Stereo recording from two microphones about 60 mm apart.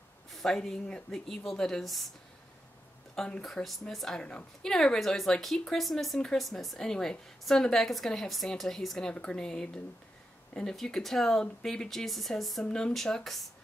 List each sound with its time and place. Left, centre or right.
0.3 s a woman's voice: centre
3.2 s a woman's voice: centre
3.6 s a woman's voice: centre
3.9 s a woman's voice: centre
4.2 s a woman's voice: centre
4.6 s a woman's voice: centre
12.6 s a woman's voice: centre